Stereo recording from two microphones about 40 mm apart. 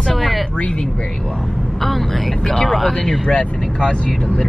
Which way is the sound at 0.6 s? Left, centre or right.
Left.